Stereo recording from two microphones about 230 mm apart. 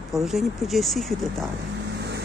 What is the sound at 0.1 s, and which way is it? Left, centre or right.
Speech, centre.